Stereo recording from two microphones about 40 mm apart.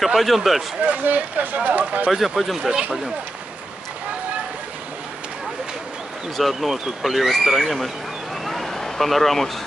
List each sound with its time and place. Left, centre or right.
0.0 s speech: centre
1.0 s speech: right
2.0 s speech: centre
6.3 s speech: centre
8.5 s a sound: centre